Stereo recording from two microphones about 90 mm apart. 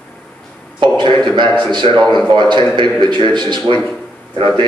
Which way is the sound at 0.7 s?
60° right (ahead or behind).